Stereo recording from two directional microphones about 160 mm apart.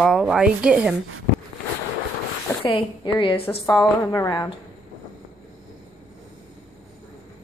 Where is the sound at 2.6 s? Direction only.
30° left (ahead or behind).